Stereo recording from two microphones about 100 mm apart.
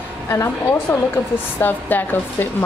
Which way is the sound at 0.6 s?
20° left (ahead or behind).